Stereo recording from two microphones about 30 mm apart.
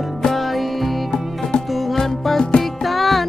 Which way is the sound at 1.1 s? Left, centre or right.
Left.